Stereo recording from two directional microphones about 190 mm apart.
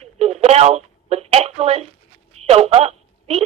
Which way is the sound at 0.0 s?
35° right (ahead or behind).